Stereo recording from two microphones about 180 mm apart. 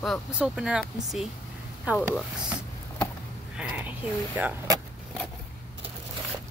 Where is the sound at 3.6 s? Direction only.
5° right (ahead or behind).